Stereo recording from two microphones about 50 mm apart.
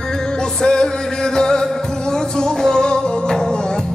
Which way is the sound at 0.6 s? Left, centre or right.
Centre.